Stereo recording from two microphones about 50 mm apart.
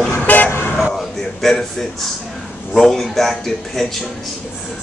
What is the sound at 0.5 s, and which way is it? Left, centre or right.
Vehicle, left.